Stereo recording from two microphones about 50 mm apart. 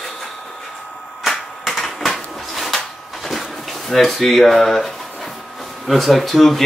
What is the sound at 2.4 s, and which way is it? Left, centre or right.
Drawer open or close, centre.